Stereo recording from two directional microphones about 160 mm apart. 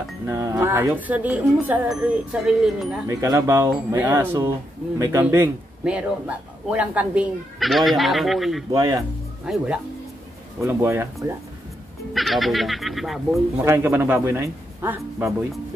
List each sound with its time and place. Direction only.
0.3 s speech: 15° right (ahead or behind)
3.1 s speech: 20° right (ahead or behind); by 8.6 s centre (ahead or behind)
8.7 s speech: 20° right (ahead or behind)
9.5 s speech: 5° right (ahead or behind)
10.7 s speech: 15° right (ahead or behind)
12.1 s speech: centre (ahead or behind)
13.7 s speech: 15° right (ahead or behind)